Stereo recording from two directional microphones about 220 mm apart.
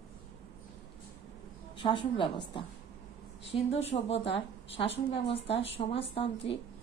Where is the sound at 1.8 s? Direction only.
20° left (ahead or behind).